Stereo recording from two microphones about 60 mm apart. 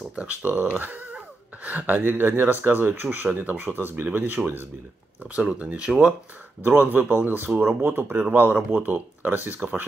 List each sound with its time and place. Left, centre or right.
0.1 s speech: right
5.2 s speech: right
6.6 s speech: right
8.2 s speech: right